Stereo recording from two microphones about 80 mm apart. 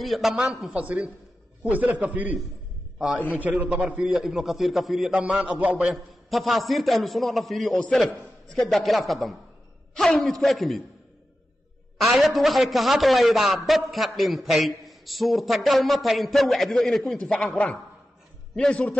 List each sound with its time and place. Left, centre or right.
0.0 s a man's voice: centre
3.2 s a man's voice: left
3.4 s a man's voice: centre
5.1 s a man's voice: centre
6.3 s speech: centre
12.0 s a man's voice: centre